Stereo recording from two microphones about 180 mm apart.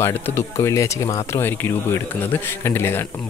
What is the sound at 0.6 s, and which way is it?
Speech, 15° left (ahead or behind).